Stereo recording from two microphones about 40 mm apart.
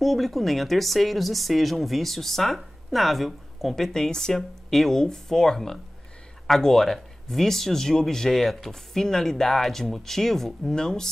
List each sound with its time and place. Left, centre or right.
0.0 s speech: centre
3.7 s speech: centre